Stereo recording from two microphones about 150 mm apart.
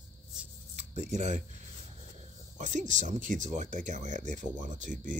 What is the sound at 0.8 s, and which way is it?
Speech, 50° right (ahead or behind).